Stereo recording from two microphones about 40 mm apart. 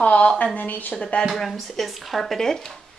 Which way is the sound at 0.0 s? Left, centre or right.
Left.